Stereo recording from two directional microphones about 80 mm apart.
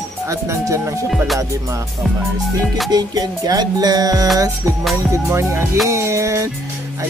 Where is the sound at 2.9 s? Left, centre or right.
Right.